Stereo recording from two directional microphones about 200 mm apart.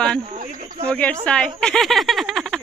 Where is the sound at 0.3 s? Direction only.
40° right (ahead or behind).